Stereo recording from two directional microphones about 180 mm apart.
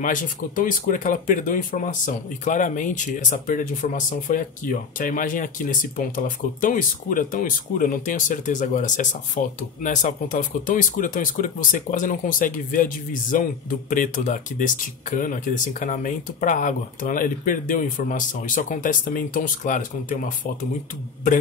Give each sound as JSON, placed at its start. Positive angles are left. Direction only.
{"t": 0.0, "sound": "speech", "side_deg": 50}